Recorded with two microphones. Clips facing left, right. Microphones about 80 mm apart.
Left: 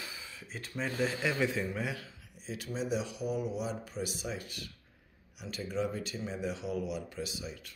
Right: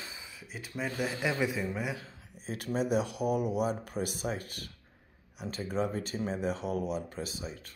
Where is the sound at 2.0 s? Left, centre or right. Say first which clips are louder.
Right 2 dB; right.